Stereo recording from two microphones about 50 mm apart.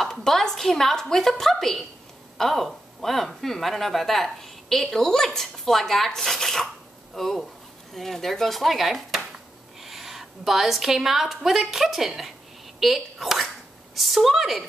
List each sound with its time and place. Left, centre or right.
0.0 s a woman's voice: centre